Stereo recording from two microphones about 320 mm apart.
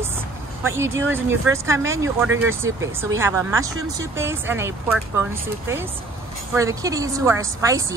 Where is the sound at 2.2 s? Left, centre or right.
Right.